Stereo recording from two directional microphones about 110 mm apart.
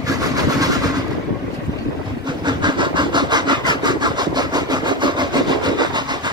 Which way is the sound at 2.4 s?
45° right (ahead or behind).